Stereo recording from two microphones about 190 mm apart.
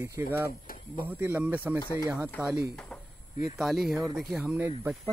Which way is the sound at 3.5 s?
Centre (ahead or behind).